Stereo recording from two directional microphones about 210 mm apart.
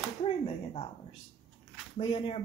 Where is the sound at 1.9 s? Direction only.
25° left (ahead or behind).